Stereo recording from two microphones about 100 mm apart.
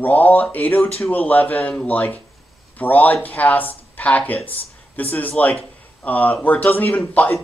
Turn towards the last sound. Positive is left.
turn(degrees=15)  # may be behind; listen again after turning